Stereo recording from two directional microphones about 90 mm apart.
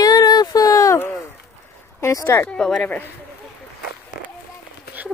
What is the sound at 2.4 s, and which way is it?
Speech, 10° left (ahead or behind).